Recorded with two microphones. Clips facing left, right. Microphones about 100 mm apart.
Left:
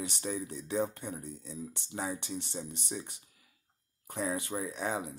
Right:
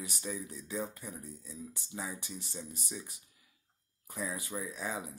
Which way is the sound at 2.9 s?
25° left (ahead or behind).